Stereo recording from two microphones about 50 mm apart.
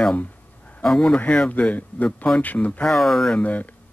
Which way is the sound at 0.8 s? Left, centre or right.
Centre.